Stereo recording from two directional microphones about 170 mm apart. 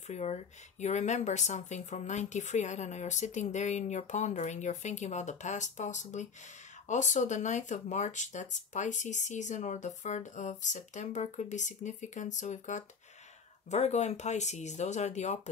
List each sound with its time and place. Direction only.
0.1 s speech: 40° left (ahead or behind)